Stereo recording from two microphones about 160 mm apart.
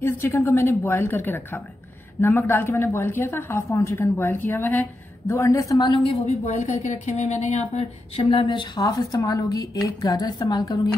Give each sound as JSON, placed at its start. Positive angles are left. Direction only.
{"t": 0.0, "sound": "a woman's voice", "side_deg": 15}
{"t": 6.2, "sound": "speech", "side_deg": 45}